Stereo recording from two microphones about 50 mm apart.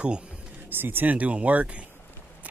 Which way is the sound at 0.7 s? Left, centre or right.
Right.